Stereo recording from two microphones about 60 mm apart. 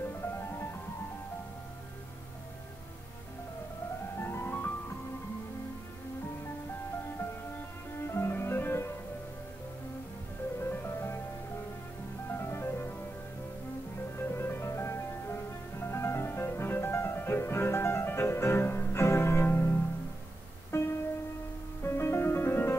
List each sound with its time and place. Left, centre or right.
0.3 s music: left
4.2 s music: left
8.1 s music: left
10.6 s music: left
12.3 s music: left
14.1 s music: left
20.7 s music: left